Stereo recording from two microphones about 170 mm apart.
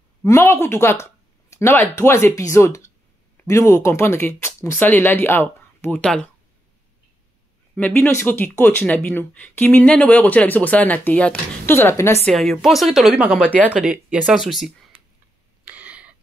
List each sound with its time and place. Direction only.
0.2 s speech: 15° left (ahead or behind)
7.7 s speech: 10° left (ahead or behind)
12.3 s speech: centre (ahead or behind)
13.5 s speech: 10° left (ahead or behind)
13.8 s speech: 5° right (ahead or behind)
15.6 s a sound: 10° right (ahead or behind)